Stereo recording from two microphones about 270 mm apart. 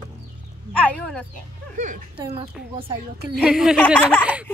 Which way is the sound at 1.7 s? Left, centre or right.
Right.